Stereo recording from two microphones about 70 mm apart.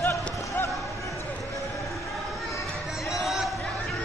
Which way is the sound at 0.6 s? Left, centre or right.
Left.